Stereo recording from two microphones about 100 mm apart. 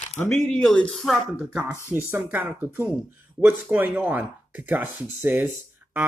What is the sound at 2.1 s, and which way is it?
Speech, 15° right (ahead or behind).